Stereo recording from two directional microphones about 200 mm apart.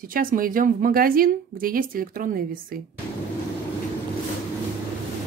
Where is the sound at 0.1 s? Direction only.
45° right (ahead or behind).